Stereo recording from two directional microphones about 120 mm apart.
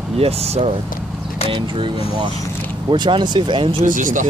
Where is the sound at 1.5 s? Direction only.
45° right (ahead or behind).